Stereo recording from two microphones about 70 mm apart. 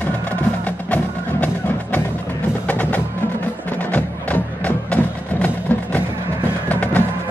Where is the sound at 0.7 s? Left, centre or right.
Left.